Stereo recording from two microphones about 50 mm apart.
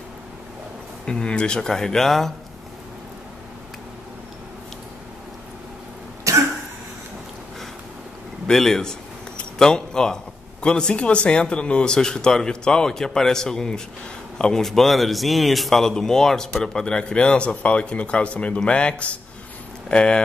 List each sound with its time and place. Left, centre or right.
1.0 s speech: centre
6.3 s cough: right
8.5 s a man's voice: centre